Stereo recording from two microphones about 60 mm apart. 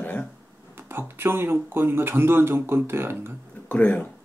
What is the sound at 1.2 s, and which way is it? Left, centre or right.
Speech, right.